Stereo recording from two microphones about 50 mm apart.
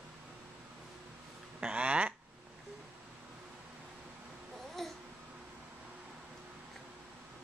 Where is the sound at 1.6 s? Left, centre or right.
Right.